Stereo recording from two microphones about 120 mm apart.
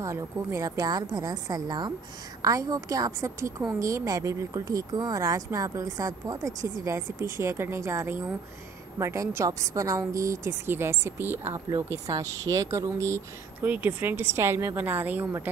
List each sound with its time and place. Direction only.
0.0 s a woman's voice: 25° right (ahead or behind)